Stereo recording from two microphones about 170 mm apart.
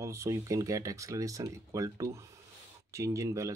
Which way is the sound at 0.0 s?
15° right (ahead or behind).